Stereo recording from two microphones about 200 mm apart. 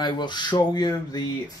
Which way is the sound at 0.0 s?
20° left (ahead or behind).